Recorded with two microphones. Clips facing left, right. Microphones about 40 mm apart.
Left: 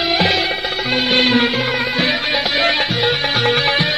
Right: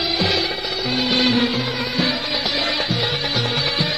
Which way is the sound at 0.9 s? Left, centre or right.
Left.